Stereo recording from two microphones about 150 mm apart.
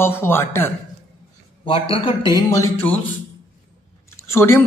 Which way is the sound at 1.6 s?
40° left (ahead or behind).